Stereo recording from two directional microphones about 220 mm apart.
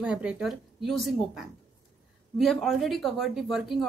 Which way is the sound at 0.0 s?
5° right (ahead or behind).